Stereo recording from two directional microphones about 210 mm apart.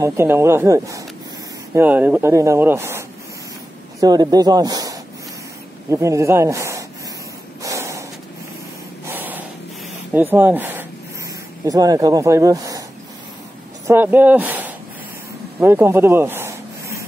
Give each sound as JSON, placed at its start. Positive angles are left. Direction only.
{"t": 0.0, "sound": "a man's voice", "side_deg": -10}
{"t": 7.6, "sound": "snort", "side_deg": -15}
{"t": 9.0, "sound": "a sound", "side_deg": -10}
{"t": 10.1, "sound": "speech", "side_deg": -10}
{"t": 13.8, "sound": "speech", "side_deg": -10}
{"t": 15.6, "sound": "a sound", "side_deg": -10}